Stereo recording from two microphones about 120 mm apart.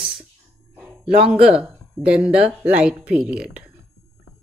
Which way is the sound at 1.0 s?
55° right (ahead or behind).